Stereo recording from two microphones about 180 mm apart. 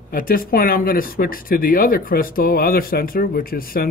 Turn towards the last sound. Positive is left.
turn(degrees=55)  # may be behind; listen again after turning